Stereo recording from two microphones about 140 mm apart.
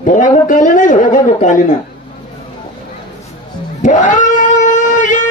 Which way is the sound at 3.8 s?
60° left (ahead or behind).